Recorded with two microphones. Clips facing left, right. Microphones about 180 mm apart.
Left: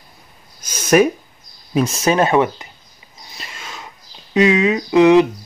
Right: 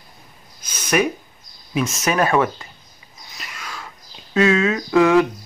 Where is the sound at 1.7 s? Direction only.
35° left (ahead or behind); by 2.7 s 20° left (ahead or behind).